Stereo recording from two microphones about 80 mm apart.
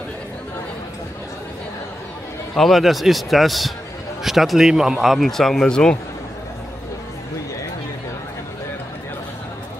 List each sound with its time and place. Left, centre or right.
2.5 s speech: centre